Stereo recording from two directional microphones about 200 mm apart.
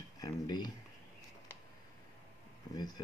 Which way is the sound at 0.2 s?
20° left (ahead or behind).